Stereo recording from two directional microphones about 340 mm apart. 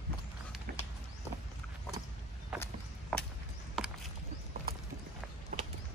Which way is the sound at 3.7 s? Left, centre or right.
Centre.